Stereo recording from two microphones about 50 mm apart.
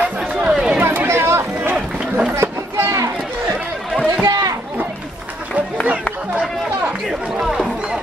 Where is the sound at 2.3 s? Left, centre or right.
Right.